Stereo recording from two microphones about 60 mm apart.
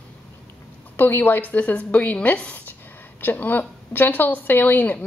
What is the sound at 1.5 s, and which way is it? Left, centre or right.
A woman's voice, left.